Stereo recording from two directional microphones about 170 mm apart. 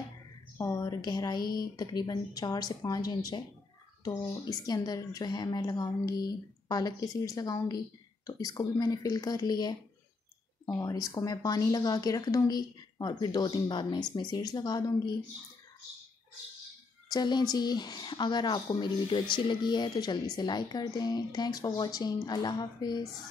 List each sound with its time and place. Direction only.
0.6 s speech: 20° left (ahead or behind)
17.1 s speech: 25° left (ahead or behind)